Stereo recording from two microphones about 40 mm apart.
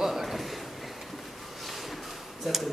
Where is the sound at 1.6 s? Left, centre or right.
Centre.